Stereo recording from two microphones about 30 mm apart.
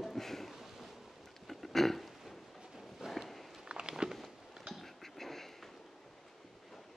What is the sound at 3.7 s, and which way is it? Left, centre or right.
Walk, right.